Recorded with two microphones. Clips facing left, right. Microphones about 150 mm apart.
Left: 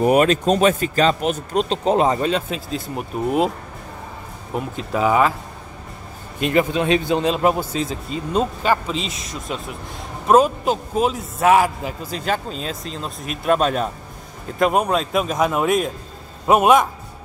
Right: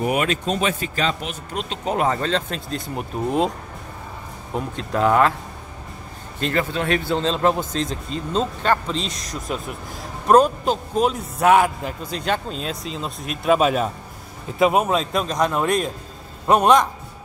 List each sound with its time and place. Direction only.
0.0 s speech: 40° left (ahead or behind); by 3.5 s 5° left (ahead or behind)
4.6 s a man's voice: 5° left (ahead or behind)
6.4 s a man's voice: 15° left (ahead or behind)